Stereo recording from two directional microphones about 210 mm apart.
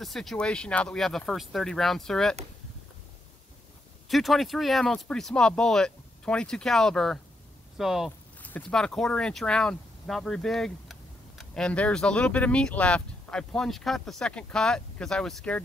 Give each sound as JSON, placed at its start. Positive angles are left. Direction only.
{"t": 0.0, "sound": "speech", "side_deg": 0}
{"t": 4.1, "sound": "speech", "side_deg": 0}